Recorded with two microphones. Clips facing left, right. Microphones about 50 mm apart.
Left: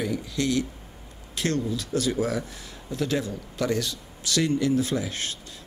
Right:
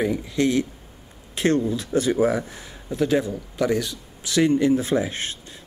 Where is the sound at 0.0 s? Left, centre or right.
Right.